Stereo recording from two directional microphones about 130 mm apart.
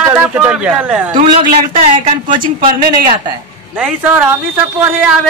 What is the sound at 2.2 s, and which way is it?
Speech, 90° right.